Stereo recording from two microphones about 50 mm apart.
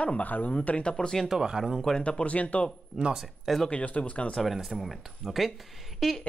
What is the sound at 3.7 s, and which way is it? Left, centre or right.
Speech, left.